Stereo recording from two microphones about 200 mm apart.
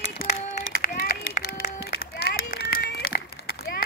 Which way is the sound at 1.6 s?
50° left (ahead or behind).